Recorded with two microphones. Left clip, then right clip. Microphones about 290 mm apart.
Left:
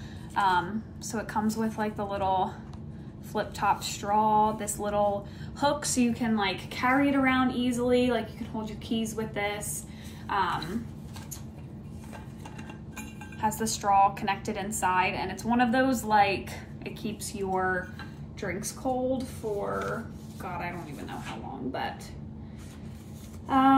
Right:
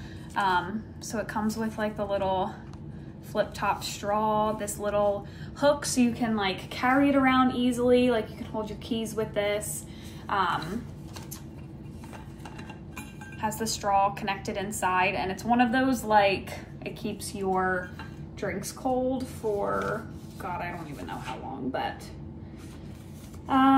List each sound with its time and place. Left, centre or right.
0.3 s a woman's voice: centre
13.4 s a woman's voice: centre
18.4 s a woman's voice: centre